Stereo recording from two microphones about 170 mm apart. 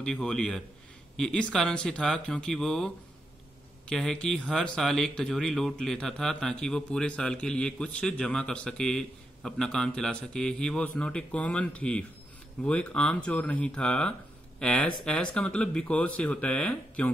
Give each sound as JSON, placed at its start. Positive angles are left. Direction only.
{"t": 0.0, "sound": "speech", "side_deg": 5}
{"t": 3.9, "sound": "speech", "side_deg": 5}